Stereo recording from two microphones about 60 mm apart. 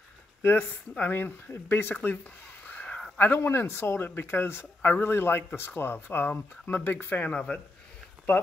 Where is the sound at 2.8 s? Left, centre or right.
Centre.